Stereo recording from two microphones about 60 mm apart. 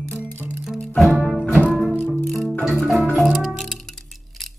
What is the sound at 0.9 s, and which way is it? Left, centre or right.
Music, centre.